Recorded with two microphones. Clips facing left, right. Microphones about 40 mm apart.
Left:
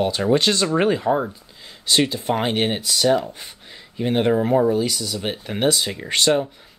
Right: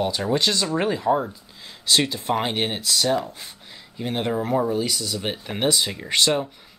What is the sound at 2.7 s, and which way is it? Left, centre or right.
Speech, centre.